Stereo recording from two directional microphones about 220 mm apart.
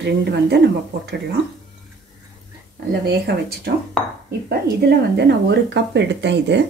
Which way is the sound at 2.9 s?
45° right (ahead or behind).